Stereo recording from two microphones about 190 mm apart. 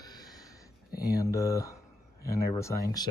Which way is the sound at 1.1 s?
15° left (ahead or behind).